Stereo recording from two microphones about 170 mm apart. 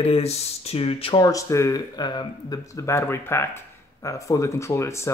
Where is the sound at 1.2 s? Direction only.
20° left (ahead or behind).